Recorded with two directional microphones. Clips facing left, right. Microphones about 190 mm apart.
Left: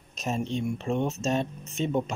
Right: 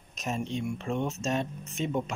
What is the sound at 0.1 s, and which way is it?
Speech, 30° left (ahead or behind).